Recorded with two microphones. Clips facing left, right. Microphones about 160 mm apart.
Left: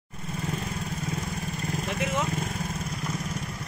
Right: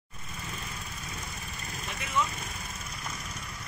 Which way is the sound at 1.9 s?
65° left (ahead or behind).